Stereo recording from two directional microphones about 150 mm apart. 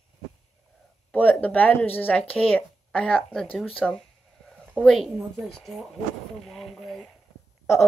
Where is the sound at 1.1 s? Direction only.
10° left (ahead or behind).